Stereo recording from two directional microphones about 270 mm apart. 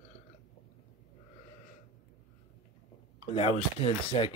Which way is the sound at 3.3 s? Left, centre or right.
Left.